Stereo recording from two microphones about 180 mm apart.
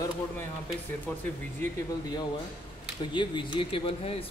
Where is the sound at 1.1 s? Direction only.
10° left (ahead or behind).